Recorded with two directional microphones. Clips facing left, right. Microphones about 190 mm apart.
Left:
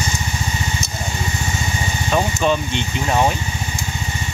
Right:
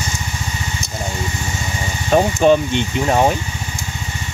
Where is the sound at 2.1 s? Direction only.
50° right (ahead or behind).